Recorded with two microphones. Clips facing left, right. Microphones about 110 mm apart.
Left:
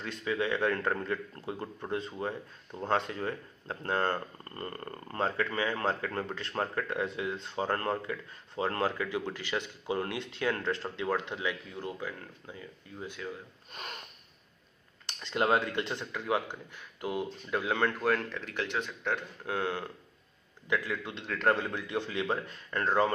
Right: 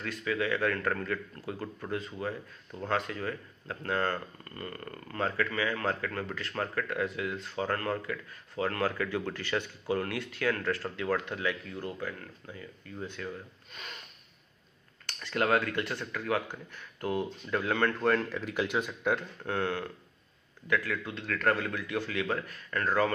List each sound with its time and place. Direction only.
0.0 s speech: 25° left (ahead or behind)
15.0 s speech: 20° left (ahead or behind); by 19.1 s 10° right (ahead or behind)
19.1 s speech: 10° left (ahead or behind)